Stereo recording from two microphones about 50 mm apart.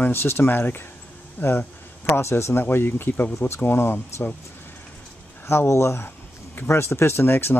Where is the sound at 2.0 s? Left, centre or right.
Left.